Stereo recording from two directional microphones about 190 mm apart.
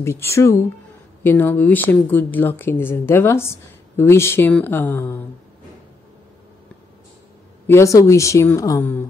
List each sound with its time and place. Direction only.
0.0 s speech: 15° left (ahead or behind)
7.6 s speech: 15° left (ahead or behind)